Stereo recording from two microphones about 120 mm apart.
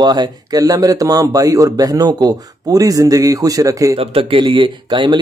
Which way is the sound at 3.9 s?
50° right (ahead or behind).